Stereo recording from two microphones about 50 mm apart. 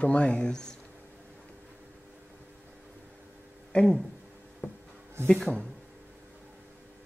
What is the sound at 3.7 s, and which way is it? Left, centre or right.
Speech, left.